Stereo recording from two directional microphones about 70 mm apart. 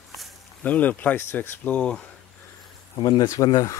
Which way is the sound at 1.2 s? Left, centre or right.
Left.